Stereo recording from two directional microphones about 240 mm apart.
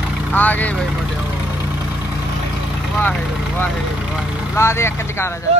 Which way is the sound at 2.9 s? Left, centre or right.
Centre.